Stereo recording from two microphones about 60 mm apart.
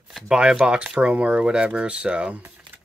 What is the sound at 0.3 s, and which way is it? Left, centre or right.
Speech, centre.